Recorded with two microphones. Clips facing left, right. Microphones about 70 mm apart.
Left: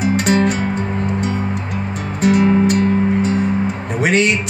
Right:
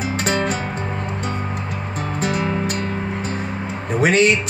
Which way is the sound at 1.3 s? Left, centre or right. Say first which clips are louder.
Left 4 dB; right.